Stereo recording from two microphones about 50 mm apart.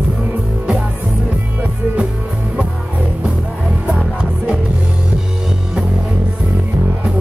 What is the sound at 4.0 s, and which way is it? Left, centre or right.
Music, right.